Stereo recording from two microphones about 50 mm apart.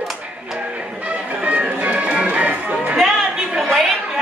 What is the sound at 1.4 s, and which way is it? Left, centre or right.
Music, right.